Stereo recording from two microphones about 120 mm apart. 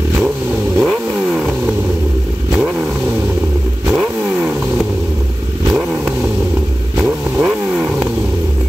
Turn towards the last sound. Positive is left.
turn(degrees=-5)  # may be behind; listen again after turning